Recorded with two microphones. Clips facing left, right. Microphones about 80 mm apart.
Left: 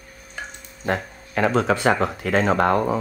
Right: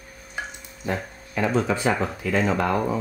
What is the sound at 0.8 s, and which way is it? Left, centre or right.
Speech, left.